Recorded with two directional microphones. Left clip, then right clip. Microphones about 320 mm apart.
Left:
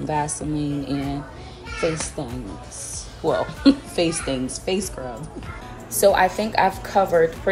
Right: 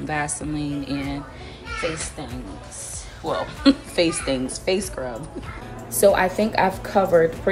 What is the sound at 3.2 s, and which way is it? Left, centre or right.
Speech, centre.